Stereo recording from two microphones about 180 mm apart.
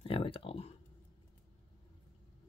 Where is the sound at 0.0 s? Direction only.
30° left (ahead or behind).